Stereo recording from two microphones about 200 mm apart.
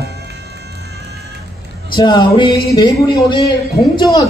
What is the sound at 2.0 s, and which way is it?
A man's voice, 20° left (ahead or behind).